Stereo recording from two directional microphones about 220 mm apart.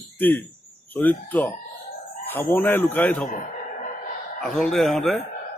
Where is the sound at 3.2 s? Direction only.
35° left (ahead or behind).